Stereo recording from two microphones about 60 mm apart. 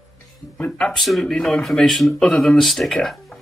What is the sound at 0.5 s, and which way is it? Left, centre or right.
Speech, left.